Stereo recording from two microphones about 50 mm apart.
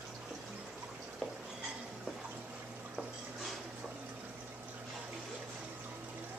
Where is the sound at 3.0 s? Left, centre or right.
Centre.